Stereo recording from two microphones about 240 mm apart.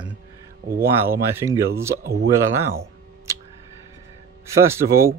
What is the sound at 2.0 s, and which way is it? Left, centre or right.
Speech, right.